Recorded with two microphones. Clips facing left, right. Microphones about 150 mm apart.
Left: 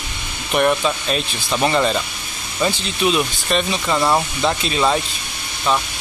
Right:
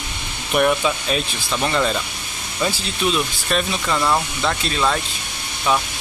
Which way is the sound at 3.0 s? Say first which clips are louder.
Left 3 dB; centre (ahead or behind).